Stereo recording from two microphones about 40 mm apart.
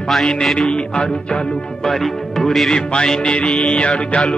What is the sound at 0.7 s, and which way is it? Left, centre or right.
Music, left.